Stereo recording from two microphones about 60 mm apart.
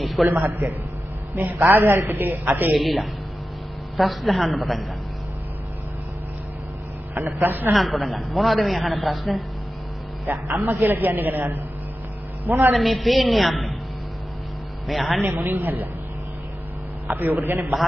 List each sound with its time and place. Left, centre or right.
0.0 s a sound: centre
0.3 s a man's voice: right
2.7 s a man's voice: centre
7.3 s a man's voice: right
7.7 s a man's voice: centre
10.3 s a man's voice: right
12.7 s a man's voice: centre
14.9 s a man's voice: centre
15.2 s a man's voice: right
17.1 s a man's voice: right